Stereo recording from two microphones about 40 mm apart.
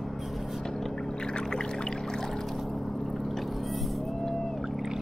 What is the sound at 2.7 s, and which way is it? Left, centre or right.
Boat, centre.